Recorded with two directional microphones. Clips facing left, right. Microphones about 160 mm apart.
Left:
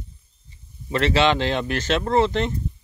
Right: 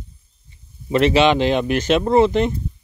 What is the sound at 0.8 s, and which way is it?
Speech, 15° right (ahead or behind).